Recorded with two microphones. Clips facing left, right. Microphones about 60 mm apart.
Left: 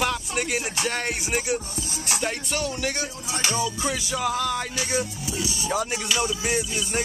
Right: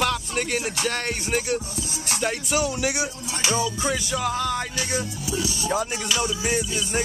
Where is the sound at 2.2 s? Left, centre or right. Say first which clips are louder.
Right 4 dB; centre.